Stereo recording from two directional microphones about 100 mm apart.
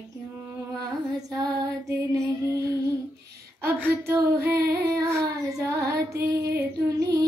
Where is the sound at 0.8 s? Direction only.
40° right (ahead or behind).